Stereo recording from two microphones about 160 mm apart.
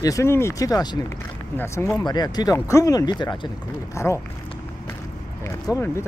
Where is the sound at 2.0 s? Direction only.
25° left (ahead or behind).